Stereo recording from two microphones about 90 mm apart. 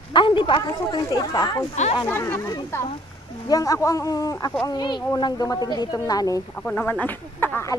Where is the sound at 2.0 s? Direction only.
25° left (ahead or behind).